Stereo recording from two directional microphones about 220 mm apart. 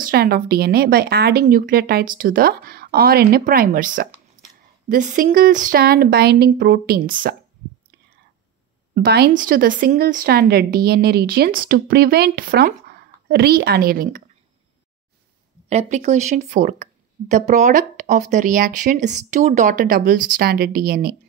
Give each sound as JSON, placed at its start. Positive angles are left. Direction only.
{"t": 0.0, "sound": "a woman's voice", "side_deg": -45}
{"t": 8.9, "sound": "speech", "side_deg": -50}
{"t": 15.7, "sound": "a woman's voice", "side_deg": -30}